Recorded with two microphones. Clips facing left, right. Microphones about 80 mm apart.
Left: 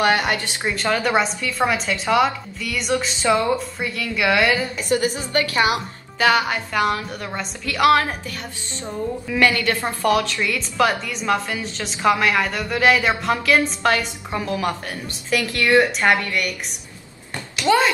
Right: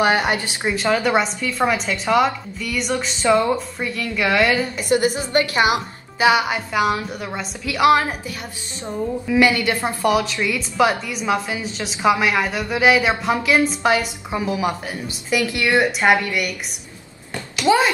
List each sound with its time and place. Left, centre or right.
0.0 s speech: centre
0.7 s a woman's voice: centre
4.7 s a woman's voice: right